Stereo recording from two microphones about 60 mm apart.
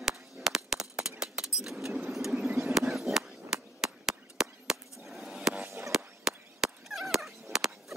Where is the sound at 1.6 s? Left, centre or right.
Centre.